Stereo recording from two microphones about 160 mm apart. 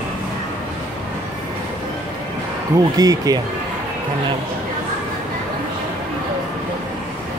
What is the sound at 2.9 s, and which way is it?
Speech, 25° right (ahead or behind).